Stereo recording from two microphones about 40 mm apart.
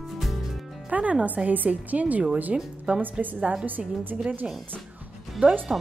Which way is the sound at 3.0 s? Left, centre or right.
Right.